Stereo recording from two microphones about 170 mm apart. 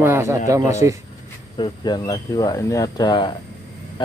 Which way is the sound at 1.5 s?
25° left (ahead or behind).